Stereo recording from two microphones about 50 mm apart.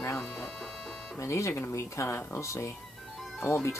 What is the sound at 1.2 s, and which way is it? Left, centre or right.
Speech, left.